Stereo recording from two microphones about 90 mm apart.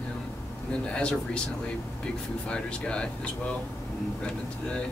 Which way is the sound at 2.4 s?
10° left (ahead or behind).